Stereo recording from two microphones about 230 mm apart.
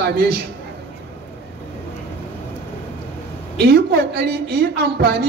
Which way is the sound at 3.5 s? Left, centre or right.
Right.